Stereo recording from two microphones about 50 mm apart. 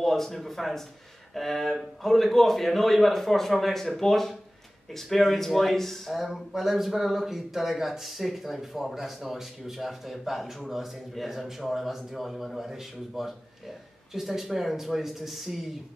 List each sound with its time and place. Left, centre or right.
0.0 s speech: centre